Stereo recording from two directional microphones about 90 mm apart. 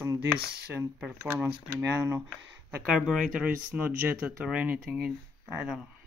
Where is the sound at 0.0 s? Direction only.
35° right (ahead or behind).